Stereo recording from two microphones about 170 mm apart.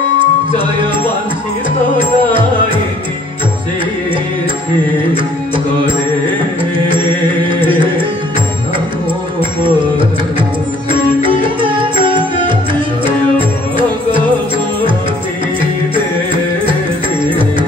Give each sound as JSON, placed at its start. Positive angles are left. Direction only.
{"t": 2.0, "sound": "music", "side_deg": -30}
{"t": 7.4, "sound": "music", "side_deg": -30}
{"t": 9.4, "sound": "music", "side_deg": -30}